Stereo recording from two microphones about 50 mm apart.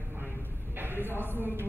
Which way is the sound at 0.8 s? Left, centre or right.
Right.